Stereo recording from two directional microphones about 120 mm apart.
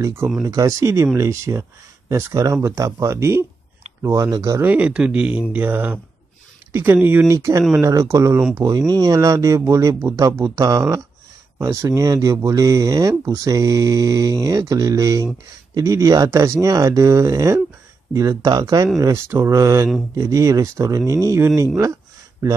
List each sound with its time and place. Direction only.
0.0 s speech: 20° right (ahead or behind)